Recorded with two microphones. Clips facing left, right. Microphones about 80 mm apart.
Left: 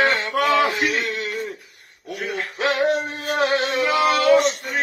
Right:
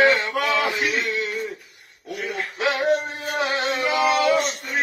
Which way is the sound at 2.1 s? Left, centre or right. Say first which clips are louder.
Left 1 dB; left.